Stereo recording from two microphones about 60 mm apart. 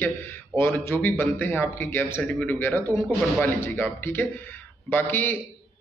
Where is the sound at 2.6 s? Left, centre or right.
Left.